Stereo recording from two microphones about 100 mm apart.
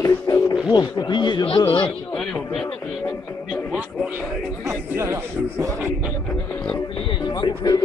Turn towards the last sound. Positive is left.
turn(degrees=40)  # may be behind; listen again after turning